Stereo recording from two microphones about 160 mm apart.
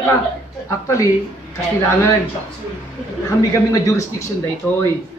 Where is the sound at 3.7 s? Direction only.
20° left (ahead or behind).